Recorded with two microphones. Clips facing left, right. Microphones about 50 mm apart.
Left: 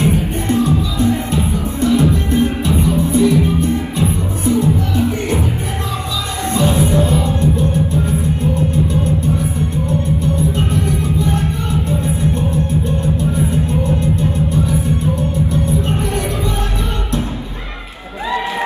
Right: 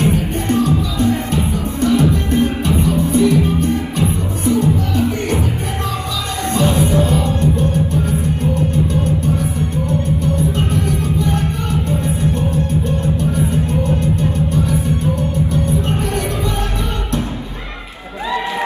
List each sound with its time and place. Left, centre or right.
0.5 s music: right
7.7 s music: right
11.2 s music: right